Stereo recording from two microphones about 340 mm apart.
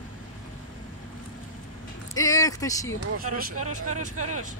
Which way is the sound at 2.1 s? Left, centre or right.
Centre.